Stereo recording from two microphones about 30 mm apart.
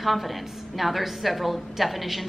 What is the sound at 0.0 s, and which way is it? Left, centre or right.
A woman's voice, centre.